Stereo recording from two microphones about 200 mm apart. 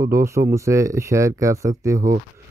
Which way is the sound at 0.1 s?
15° right (ahead or behind).